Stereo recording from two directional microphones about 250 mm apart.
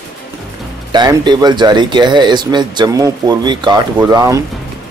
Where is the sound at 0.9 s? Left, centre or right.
Centre.